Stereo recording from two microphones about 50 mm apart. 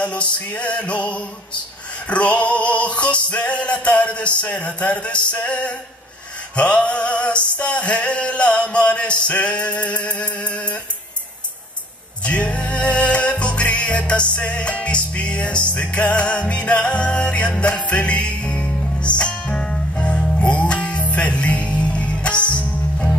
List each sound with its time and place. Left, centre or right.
0.0 s music: left
12.2 s music: left